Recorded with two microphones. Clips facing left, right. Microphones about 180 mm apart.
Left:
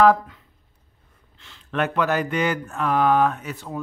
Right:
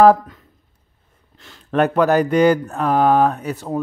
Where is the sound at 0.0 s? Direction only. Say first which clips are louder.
Right 5 dB; 40° right (ahead or behind).